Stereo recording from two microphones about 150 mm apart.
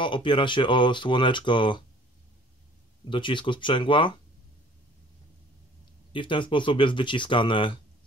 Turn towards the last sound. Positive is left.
turn(degrees=35)  # may be behind; listen again after turning